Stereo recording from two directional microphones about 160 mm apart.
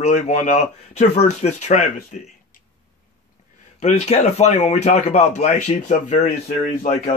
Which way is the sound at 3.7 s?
50° left (ahead or behind).